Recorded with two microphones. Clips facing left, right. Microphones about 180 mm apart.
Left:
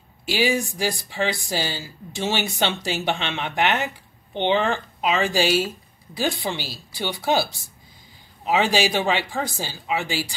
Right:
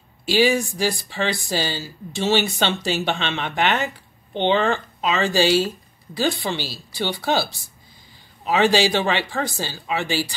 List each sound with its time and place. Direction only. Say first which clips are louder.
0.2 s speech: right 4 dB; 15° left (ahead or behind)